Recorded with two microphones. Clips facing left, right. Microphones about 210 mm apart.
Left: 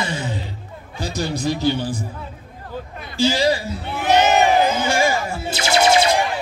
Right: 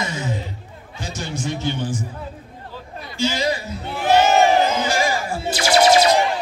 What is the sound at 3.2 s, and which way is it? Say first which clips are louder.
Speech: left 4 dB; 30° left (ahead or behind).